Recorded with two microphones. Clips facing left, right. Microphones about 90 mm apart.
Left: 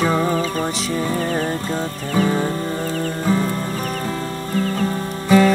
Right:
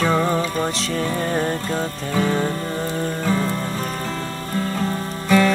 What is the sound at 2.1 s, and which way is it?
Music, 5° left (ahead or behind).